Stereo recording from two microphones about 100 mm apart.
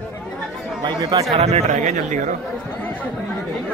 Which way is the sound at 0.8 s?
45° right (ahead or behind).